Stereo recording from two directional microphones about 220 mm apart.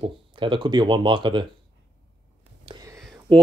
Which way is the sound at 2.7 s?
15° right (ahead or behind).